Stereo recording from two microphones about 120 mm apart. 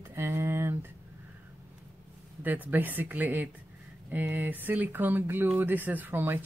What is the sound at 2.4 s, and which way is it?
Speech, 15° right (ahead or behind).